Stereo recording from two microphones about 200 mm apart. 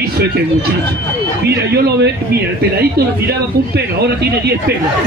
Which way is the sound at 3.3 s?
55° right (ahead or behind).